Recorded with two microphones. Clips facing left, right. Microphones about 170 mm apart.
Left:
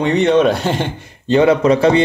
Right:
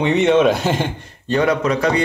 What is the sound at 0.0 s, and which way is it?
Speech, centre (ahead or behind).